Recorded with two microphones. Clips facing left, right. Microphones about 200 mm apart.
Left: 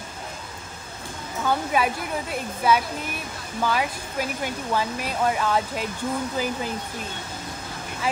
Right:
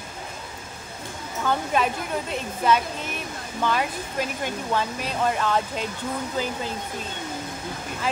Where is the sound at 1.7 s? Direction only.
10° left (ahead or behind).